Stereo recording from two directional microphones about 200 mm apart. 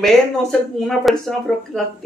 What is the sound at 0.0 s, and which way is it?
Speech, centre (ahead or behind).